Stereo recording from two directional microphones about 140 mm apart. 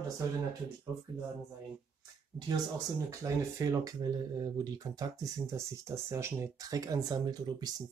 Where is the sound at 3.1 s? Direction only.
25° right (ahead or behind).